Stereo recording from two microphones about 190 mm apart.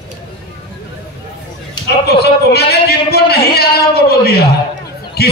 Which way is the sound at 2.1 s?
55° left (ahead or behind).